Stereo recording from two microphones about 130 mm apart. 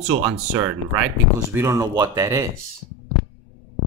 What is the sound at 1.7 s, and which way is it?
Speech, 25° right (ahead or behind).